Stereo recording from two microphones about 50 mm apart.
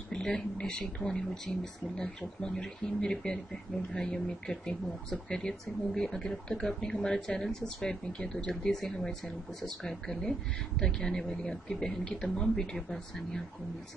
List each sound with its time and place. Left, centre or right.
0.1 s a sound: centre
0.7 s speech: left
1.0 s speech: centre